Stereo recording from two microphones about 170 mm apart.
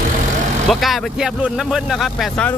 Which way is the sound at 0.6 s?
Centre (ahead or behind).